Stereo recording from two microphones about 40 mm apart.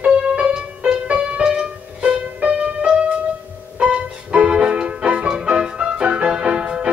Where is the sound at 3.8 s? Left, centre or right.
Right.